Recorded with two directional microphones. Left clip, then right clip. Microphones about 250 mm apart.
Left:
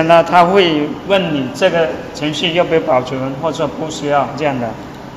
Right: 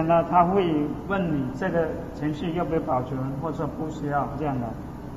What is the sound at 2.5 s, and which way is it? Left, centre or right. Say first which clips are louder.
Speech: left 13 dB; left.